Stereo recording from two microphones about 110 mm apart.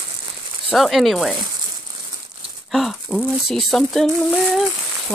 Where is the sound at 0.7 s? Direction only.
Centre (ahead or behind).